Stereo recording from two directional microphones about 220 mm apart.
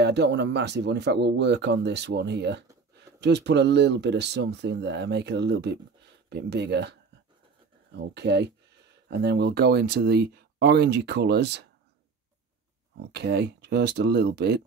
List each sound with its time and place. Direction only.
0.0 s speech: 50° right (ahead or behind)
8.0 s speech: 50° right (ahead or behind)
13.1 s speech: 50° right (ahead or behind)